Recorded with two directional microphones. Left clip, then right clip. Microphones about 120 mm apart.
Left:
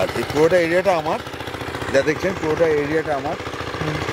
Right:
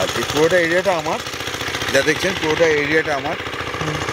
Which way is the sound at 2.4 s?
35° right (ahead or behind).